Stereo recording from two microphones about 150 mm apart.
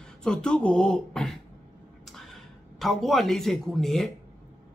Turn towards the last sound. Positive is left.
turn(degrees=0)  # may be behind; listen again after turning